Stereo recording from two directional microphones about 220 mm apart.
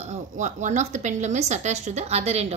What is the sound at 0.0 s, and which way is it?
A woman's voice, 30° right (ahead or behind).